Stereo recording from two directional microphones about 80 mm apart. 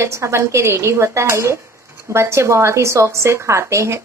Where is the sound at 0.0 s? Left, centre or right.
Right.